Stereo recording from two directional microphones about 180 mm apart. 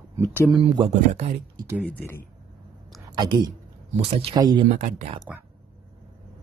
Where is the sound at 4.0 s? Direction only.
35° right (ahead or behind).